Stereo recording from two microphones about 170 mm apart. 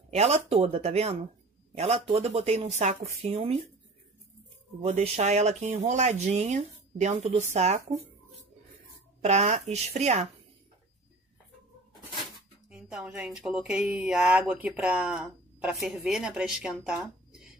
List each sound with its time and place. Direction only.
0.1 s speech: 40° right (ahead or behind)
4.8 s speech: 35° right (ahead or behind)
9.2 s speech: 40° right (ahead or behind)
12.6 s speech: 5° right (ahead or behind)